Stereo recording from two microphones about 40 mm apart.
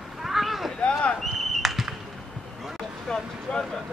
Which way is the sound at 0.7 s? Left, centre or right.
Left.